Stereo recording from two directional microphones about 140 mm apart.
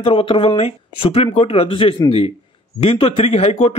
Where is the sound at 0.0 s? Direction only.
40° left (ahead or behind).